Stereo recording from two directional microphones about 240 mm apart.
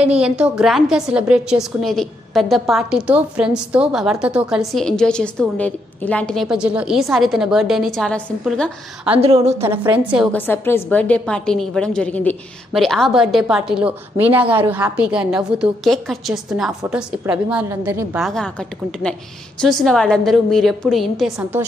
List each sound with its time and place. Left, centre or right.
0.0 s a woman's voice: centre
9.2 s a woman's voice: right
9.6 s a woman's voice: centre
10.3 s a woman's voice: centre